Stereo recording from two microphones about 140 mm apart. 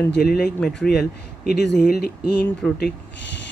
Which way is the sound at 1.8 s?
90° left.